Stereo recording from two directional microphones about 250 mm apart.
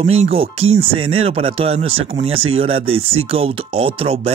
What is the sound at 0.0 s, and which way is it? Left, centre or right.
Speech, right.